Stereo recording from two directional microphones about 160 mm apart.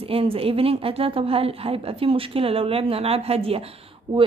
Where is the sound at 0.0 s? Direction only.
35° right (ahead or behind).